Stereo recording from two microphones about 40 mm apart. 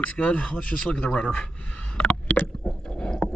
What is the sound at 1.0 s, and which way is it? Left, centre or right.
Speech, centre.